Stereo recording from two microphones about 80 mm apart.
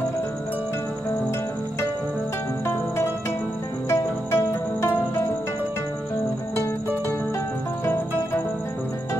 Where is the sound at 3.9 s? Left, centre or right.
Left.